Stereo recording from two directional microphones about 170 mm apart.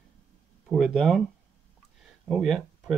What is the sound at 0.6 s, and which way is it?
Speech, centre (ahead or behind).